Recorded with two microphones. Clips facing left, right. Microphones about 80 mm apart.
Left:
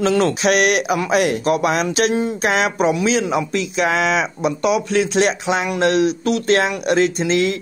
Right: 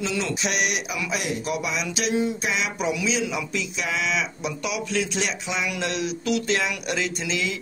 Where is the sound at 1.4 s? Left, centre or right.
Left.